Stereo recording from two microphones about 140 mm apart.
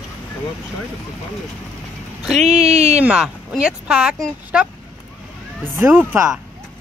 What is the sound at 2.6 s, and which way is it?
Speech, 50° right (ahead or behind).